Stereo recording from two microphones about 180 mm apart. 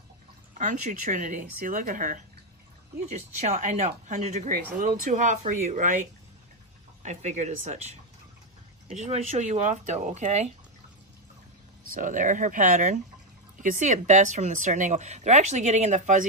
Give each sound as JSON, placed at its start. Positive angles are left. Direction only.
{"t": 0.6, "sound": "speech", "side_deg": -45}
{"t": 11.9, "sound": "speech", "side_deg": -45}